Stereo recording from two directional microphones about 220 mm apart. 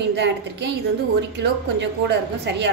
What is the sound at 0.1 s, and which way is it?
A woman's voice, 50° right (ahead or behind).